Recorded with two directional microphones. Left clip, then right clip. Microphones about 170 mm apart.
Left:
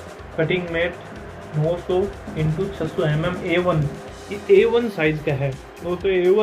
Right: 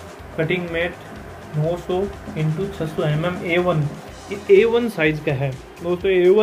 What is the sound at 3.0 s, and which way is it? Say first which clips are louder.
Speech: even; 20° right (ahead or behind).